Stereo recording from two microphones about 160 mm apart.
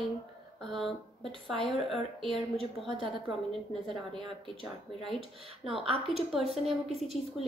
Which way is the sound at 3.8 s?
30° right (ahead or behind).